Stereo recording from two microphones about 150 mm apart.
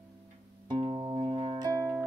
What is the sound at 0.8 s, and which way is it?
Music, 30° right (ahead or behind).